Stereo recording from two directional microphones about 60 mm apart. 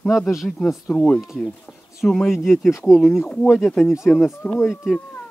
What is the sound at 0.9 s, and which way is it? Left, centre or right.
Speech, centre.